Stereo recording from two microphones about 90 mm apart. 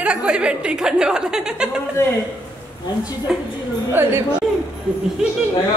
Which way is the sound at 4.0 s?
20° right (ahead or behind).